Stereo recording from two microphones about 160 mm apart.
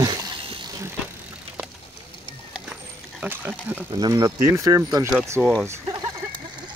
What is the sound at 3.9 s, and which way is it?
Speech, 25° right (ahead or behind).